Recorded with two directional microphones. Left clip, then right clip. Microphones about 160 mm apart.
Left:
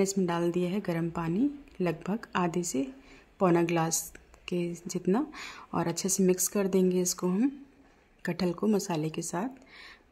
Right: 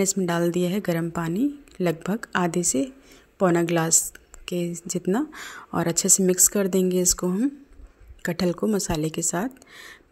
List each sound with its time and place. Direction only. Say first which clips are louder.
0.0 s a woman's voice: right 5 dB; 15° right (ahead or behind)